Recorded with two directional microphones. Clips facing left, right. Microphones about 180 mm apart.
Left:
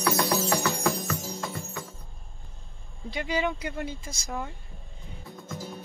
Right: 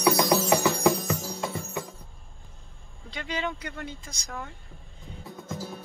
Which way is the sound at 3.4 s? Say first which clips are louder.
Left 3 dB; 15° left (ahead or behind).